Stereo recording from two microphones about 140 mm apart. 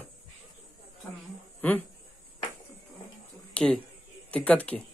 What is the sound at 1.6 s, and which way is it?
Speech, 10° left (ahead or behind).